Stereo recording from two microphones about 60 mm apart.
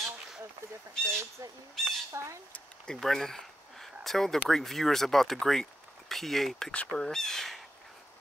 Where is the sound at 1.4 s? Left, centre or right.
Right.